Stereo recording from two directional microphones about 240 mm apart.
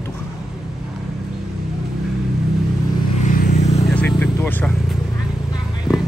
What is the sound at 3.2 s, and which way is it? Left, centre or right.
Vehicle, left.